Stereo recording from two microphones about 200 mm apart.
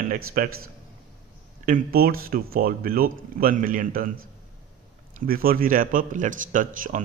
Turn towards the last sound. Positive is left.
turn(degrees=-40)  # may be behind; listen again after turning